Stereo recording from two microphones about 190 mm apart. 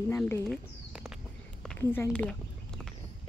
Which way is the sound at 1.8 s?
10° left (ahead or behind).